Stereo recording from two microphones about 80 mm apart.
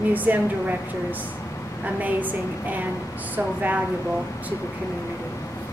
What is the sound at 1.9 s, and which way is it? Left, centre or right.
A woman's voice, right.